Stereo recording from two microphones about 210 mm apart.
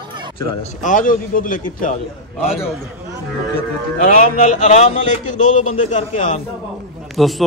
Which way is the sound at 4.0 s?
40° left (ahead or behind).